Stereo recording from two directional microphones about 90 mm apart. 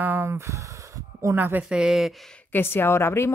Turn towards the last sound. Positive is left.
turn(degrees=25)  # may be behind; listen again after turning